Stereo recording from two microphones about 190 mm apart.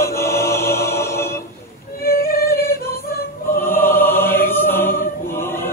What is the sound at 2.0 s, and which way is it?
Yodeling, 50° left (ahead or behind).